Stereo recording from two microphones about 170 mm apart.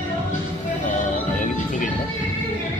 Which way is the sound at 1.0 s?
50° left (ahead or behind).